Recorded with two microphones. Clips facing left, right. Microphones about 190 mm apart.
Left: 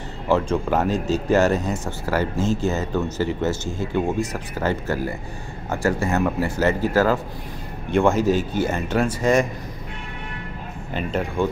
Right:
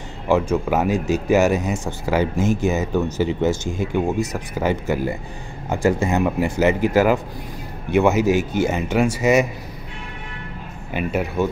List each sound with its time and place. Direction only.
0.3 s speech: 10° right (ahead or behind)
10.9 s speech: 10° right (ahead or behind)